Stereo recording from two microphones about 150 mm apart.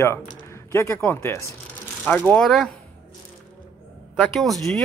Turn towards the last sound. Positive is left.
turn(degrees=0)  # may be behind; listen again after turning